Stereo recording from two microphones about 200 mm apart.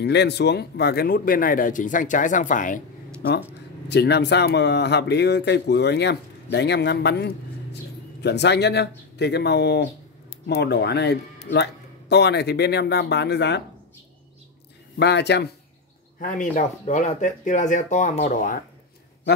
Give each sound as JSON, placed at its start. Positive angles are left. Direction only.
{"t": 0.0, "sound": "speech", "side_deg": 55}
{"t": 3.9, "sound": "speech", "side_deg": 55}
{"t": 15.0, "sound": "speech", "side_deg": 60}
{"t": 16.2, "sound": "speech", "side_deg": 40}